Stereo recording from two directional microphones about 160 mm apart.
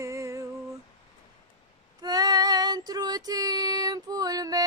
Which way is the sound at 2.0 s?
25° right (ahead or behind).